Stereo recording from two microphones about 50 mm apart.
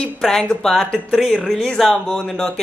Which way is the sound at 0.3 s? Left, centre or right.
Centre.